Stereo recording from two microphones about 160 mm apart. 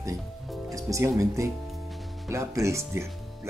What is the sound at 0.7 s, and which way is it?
Speech, 20° right (ahead or behind).